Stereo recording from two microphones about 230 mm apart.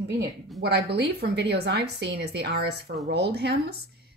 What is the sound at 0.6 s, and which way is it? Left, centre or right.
Speech, right.